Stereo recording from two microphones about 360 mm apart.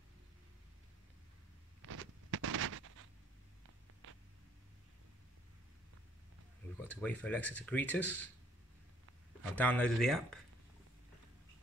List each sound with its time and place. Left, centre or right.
1.8 s a sound: right
6.8 s speech: centre
9.4 s speech: centre